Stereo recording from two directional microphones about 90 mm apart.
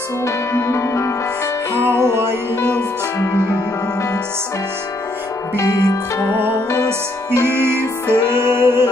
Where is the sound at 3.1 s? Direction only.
35° left (ahead or behind).